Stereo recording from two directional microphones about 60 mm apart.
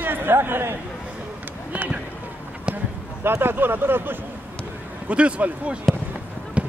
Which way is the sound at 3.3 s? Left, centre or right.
Right.